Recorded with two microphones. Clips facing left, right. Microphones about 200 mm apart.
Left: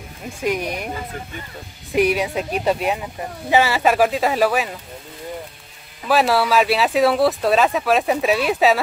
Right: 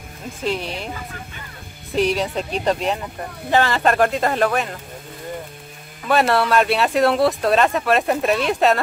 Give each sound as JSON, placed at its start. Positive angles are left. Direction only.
{"t": 0.4, "sound": "speech", "side_deg": 15}
{"t": 2.0, "sound": "speech", "side_deg": 10}
{"t": 6.0, "sound": "speech", "side_deg": 0}